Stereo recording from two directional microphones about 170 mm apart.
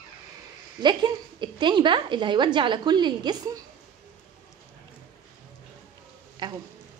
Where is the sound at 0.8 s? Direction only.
25° right (ahead or behind).